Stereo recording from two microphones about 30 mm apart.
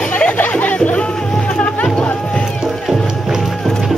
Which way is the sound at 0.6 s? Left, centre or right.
Left.